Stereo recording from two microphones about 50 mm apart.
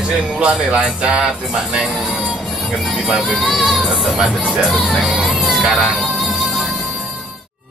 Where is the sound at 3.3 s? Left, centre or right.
Centre.